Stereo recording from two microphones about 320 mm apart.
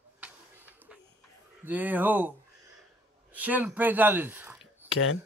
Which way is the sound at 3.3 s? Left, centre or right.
Centre.